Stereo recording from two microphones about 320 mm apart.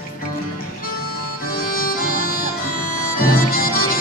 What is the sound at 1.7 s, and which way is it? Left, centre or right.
Music, left.